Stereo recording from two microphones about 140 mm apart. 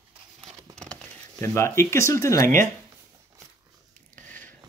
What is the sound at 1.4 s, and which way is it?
Speech, 20° left (ahead or behind).